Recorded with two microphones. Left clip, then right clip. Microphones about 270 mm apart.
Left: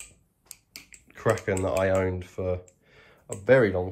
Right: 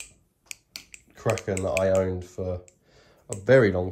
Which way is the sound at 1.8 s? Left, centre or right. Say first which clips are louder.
Right 2 dB; centre.